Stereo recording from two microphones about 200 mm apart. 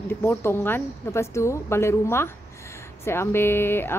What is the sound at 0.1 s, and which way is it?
A woman's voice, 10° left (ahead or behind).